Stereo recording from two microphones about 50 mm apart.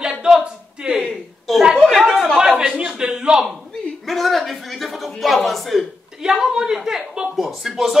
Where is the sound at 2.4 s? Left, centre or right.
Centre.